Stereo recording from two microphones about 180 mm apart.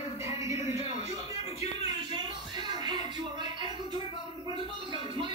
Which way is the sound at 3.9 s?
30° left (ahead or behind).